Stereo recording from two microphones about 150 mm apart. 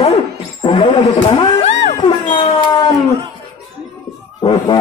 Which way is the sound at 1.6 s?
40° left (ahead or behind).